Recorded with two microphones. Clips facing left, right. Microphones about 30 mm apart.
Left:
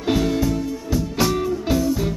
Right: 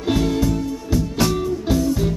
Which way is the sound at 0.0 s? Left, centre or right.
Centre.